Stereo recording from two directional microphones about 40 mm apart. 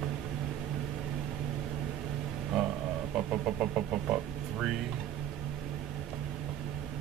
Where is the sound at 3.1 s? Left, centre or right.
Centre.